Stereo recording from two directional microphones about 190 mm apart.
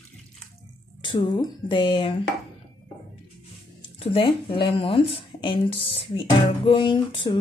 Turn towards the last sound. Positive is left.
turn(degrees=25)  # may be behind; listen again after turning